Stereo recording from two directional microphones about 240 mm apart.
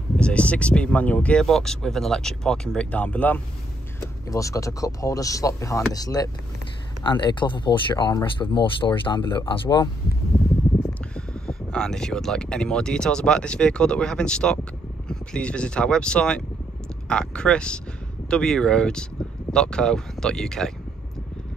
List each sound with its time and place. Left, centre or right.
0.2 s speech: centre
10.8 s speech: centre